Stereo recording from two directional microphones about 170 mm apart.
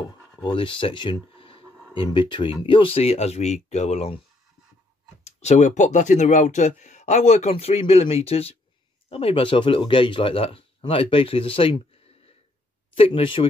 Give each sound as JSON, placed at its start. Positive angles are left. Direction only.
{"t": 0.4, "sound": "speech", "side_deg": 30}
{"t": 5.2, "sound": "speech", "side_deg": 40}
{"t": 12.9, "sound": "speech", "side_deg": 30}